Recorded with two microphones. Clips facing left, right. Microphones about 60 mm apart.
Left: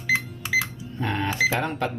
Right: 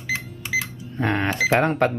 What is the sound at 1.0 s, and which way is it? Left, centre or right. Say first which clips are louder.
Speech: right 2 dB; right.